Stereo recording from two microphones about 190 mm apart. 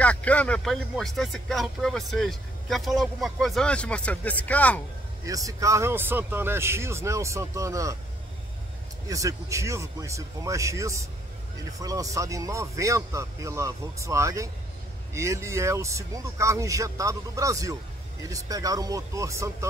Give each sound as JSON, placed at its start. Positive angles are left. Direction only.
{"t": 0.0, "sound": "speech", "side_deg": 5}
{"t": 5.2, "sound": "speech", "side_deg": -15}
{"t": 9.1, "sound": "speech", "side_deg": -15}